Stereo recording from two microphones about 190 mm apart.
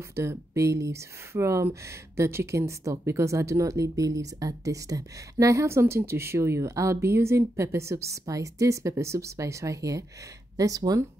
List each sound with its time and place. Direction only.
0.1 s speech: 15° right (ahead or behind)